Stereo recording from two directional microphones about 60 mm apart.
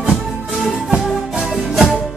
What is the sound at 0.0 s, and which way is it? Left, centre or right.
Music, centre.